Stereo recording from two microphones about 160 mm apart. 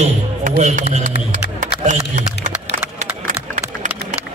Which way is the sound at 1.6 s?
50° right (ahead or behind).